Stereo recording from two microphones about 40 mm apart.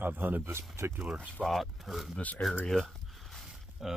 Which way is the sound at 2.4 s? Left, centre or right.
Left.